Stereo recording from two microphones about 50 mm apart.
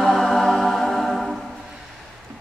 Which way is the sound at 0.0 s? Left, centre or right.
Centre.